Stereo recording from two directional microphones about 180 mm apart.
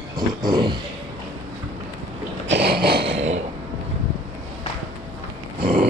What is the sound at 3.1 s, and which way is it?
Throat clearing, 35° right (ahead or behind).